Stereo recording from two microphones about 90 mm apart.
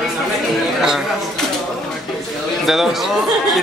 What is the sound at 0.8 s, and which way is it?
Speech, 5° right (ahead or behind).